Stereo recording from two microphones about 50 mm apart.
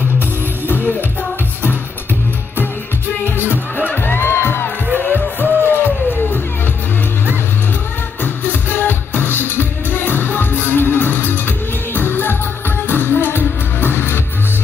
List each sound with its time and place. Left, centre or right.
3.3 s music: left
8.2 s music: left